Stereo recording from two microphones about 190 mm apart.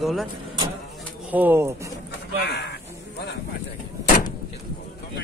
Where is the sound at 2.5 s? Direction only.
60° left (ahead or behind).